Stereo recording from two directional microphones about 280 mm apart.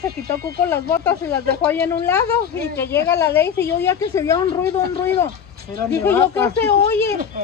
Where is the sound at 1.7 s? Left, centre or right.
Centre.